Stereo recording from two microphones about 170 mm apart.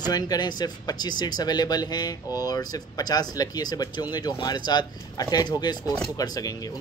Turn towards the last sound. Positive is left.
turn(degrees=20)  # may be behind; listen again after turning